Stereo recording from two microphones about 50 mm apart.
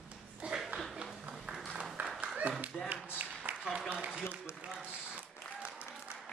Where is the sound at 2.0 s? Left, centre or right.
Right.